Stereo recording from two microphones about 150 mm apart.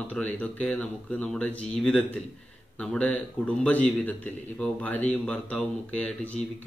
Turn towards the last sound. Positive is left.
turn(degrees=10)  # may be behind; listen again after turning